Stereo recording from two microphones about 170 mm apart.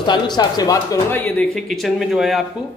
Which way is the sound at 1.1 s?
10° left (ahead or behind).